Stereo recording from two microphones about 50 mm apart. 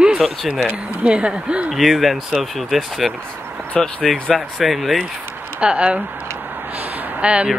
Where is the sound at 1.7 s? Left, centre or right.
Centre.